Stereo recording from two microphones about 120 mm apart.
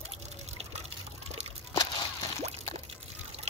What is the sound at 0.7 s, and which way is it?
Water, 65° right (ahead or behind).